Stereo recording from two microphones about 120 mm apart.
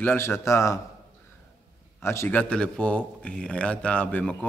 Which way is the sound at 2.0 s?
20° left (ahead or behind).